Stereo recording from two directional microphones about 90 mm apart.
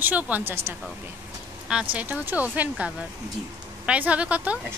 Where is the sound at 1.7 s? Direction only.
10° right (ahead or behind).